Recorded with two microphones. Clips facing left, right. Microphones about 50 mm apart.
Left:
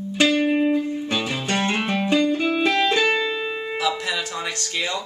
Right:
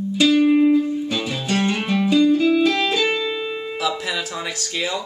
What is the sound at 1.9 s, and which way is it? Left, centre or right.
Music, left.